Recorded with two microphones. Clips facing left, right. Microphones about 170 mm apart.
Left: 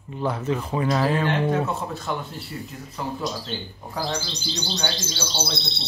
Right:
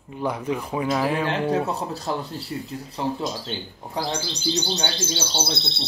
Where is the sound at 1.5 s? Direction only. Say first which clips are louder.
Right 1 dB; 35° right (ahead or behind).